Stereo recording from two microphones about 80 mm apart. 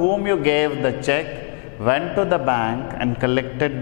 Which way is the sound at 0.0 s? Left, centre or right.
Centre.